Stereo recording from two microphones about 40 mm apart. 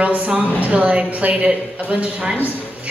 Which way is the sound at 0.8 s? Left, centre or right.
Right.